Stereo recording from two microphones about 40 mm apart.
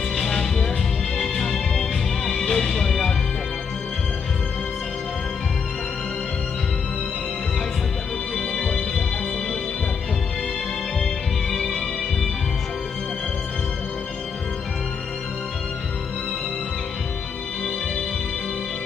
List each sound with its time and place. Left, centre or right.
0.1 s music: centre
8.4 s music: centre
11.5 s music: centre